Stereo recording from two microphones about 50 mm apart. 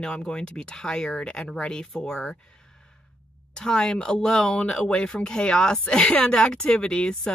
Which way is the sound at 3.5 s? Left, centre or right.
Centre.